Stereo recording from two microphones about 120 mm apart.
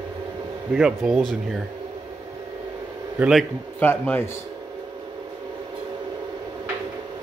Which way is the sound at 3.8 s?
20° left (ahead or behind).